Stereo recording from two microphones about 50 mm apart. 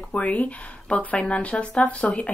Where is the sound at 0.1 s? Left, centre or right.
Left.